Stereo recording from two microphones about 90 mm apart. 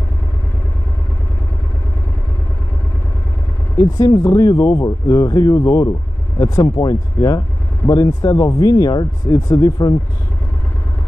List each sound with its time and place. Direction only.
3.7 s speech: 40° left (ahead or behind)
5.6 s speech: 35° left (ahead or behind)